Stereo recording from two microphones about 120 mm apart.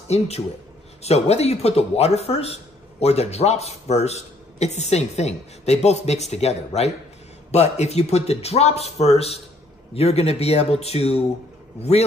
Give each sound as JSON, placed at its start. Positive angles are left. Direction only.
{"t": 1.0, "sound": "speech", "side_deg": 60}